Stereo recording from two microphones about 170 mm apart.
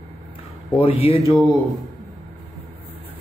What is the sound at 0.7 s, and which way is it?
Speech, 35° left (ahead or behind).